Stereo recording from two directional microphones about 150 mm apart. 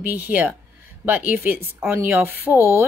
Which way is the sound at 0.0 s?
10° right (ahead or behind).